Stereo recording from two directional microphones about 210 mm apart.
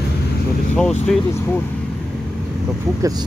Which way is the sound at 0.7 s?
5° left (ahead or behind).